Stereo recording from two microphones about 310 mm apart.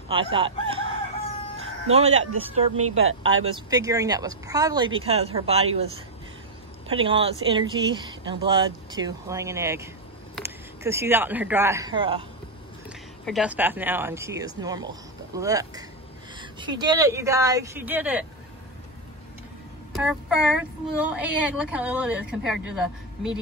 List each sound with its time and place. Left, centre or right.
0.1 s chicken: centre
1.9 s speech: centre
3.0 s speech: right
3.5 s speech: centre
6.9 s speech: centre
13.2 s speech: centre
19.9 s a woman's voice: centre